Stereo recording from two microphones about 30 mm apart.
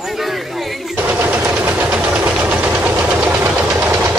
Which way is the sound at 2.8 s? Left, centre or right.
Right.